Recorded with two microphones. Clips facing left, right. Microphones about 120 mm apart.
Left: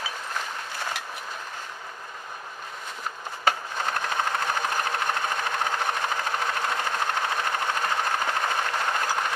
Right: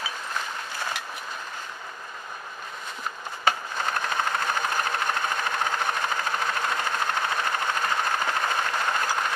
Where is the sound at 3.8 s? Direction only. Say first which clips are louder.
Even; 35° left (ahead or behind).